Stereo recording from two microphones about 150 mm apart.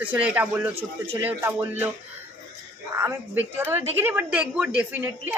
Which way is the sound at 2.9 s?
15° right (ahead or behind).